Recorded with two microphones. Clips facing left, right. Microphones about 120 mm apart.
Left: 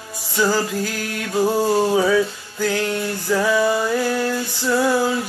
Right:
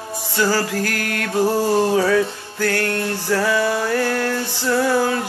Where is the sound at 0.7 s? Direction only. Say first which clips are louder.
Right 2 dB; 85° right.